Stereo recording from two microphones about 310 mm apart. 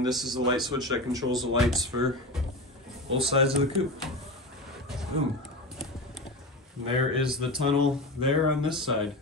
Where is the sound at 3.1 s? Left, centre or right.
Centre.